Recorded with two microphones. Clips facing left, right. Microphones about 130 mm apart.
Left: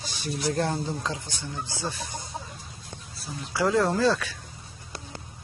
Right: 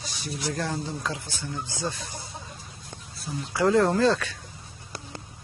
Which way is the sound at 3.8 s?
10° left (ahead or behind).